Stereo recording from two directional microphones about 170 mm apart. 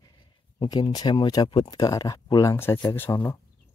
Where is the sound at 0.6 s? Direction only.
25° left (ahead or behind).